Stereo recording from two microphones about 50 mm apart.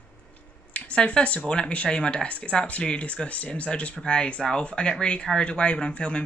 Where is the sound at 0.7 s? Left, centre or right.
Left.